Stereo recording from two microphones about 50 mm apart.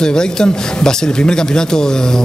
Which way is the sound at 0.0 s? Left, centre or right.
Centre.